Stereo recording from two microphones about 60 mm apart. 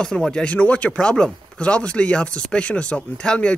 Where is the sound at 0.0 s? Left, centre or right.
Centre.